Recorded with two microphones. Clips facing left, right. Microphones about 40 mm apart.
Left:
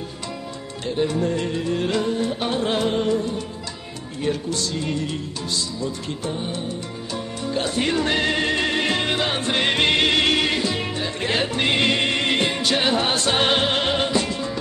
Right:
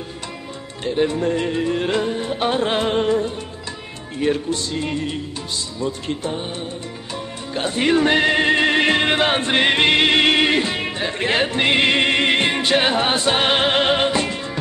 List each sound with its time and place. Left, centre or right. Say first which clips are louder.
0.8 s music: right 3 dB; right
7.5 s music: right 4 dB; right
9.7 s music: right 3 dB; right